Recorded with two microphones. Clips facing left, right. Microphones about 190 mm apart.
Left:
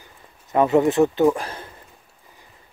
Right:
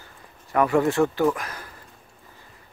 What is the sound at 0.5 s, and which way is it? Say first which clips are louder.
Speech: left 3 dB; 20° left (ahead or behind).